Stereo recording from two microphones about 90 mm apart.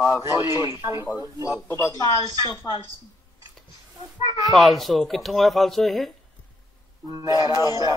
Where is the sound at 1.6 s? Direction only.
30° left (ahead or behind).